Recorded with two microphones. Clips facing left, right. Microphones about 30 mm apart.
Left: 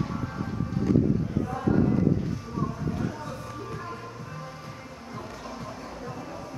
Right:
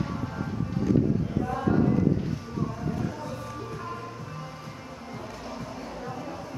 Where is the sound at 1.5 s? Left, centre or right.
Centre.